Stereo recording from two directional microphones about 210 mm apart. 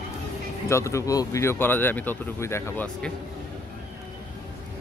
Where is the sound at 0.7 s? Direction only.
15° left (ahead or behind).